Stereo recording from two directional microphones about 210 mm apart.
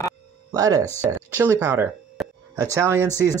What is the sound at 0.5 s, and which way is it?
Speech, 15° right (ahead or behind).